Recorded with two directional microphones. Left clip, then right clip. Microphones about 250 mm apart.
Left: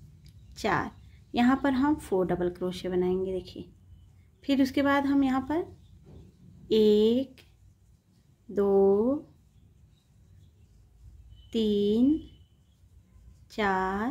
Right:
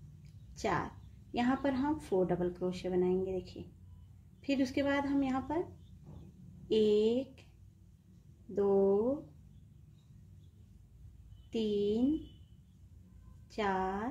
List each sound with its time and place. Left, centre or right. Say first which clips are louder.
0.5 s a woman's voice: left 6 dB; centre
6.7 s a woman's voice: left 6 dB; centre
8.5 s a woman's voice: left 6 dB; left
11.5 s a woman's voice: left 6 dB; centre
13.5 s a woman's voice: left 6 dB; centre